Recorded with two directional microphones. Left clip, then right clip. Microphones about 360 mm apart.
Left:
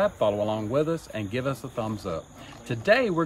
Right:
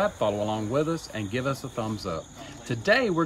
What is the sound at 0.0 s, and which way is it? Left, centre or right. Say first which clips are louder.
Speech: left 2 dB; centre.